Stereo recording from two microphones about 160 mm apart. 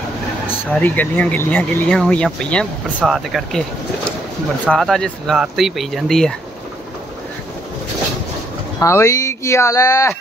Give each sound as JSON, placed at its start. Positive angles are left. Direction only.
{"t": 0.7, "sound": "speech", "side_deg": 10}
{"t": 4.6, "sound": "speech", "side_deg": 0}
{"t": 8.7, "sound": "speech", "side_deg": 15}